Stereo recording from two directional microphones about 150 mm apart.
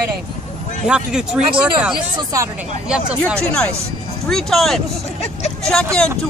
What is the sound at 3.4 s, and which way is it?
Speech, 5° left (ahead or behind).